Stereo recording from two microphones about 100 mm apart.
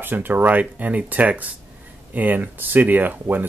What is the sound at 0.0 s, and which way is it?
Speech, 20° right (ahead or behind).